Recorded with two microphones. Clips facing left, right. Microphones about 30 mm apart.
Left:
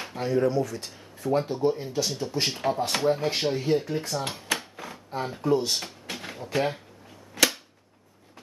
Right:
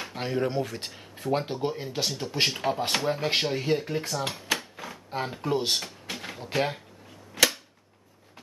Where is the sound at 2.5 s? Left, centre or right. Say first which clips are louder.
Left 1 dB; centre.